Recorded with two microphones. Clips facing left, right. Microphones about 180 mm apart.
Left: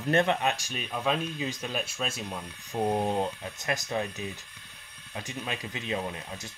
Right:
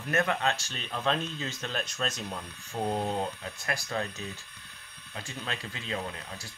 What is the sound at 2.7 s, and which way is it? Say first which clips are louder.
Speech: left 3 dB; 20° left (ahead or behind).